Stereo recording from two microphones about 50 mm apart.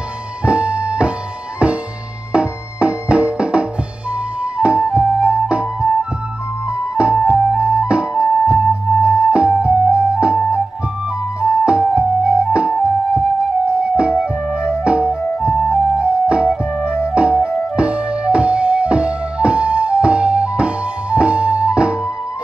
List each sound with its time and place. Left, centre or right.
0.5 s music: right
16.0 s music: right